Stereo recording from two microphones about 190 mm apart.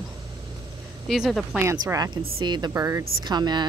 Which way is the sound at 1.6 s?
15° right (ahead or behind).